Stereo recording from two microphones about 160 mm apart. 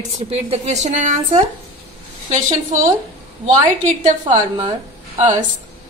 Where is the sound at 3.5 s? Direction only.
50° right (ahead or behind).